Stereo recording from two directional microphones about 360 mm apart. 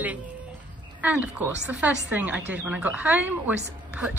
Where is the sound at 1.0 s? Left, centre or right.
Centre.